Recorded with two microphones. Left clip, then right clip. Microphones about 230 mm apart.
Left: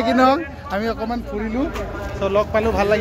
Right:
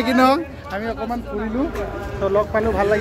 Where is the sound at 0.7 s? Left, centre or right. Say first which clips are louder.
Left 4 dB; left.